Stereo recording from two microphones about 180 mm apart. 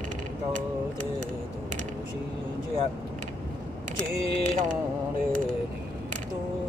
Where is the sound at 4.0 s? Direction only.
45° right (ahead or behind).